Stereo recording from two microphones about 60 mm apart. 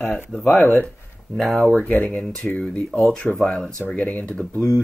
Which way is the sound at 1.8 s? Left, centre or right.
Left.